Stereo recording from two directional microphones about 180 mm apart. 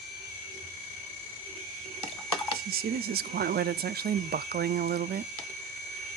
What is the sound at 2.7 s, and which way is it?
Speech, 60° right (ahead or behind).